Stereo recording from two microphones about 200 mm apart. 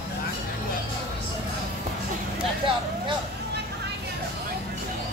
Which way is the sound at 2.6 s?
25° right (ahead or behind).